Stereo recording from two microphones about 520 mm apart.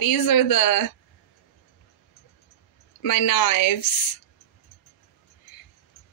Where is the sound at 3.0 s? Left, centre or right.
Left.